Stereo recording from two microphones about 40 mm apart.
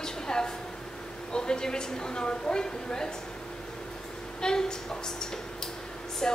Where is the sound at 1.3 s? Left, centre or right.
Left.